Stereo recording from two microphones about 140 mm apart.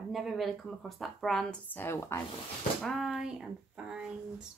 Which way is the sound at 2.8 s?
Centre (ahead or behind).